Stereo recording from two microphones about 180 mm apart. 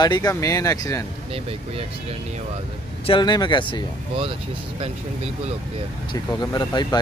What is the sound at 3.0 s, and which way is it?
Speech, 25° left (ahead or behind).